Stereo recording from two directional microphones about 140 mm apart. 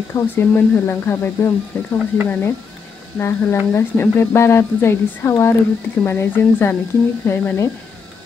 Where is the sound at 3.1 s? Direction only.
15° left (ahead or behind).